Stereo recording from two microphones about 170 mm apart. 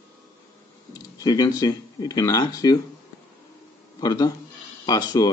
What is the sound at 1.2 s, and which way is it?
Speech, 20° left (ahead or behind).